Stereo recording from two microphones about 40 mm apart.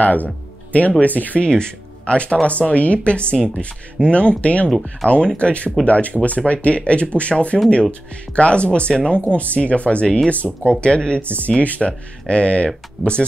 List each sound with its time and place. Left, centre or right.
0.0 s speech: left
1.5 s speech: left
10.3 s speech: left
10.7 s speech: left